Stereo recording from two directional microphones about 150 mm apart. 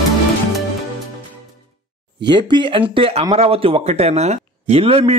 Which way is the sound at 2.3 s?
30° right (ahead or behind).